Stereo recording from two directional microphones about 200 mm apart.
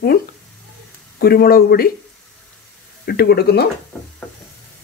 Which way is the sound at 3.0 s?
50° left (ahead or behind).